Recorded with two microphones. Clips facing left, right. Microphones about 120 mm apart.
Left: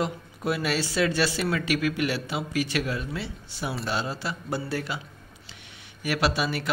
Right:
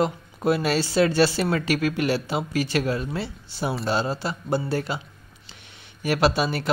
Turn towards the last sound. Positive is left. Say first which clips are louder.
# right 4 dB
turn(degrees=-30)  # may be behind; listen again after turning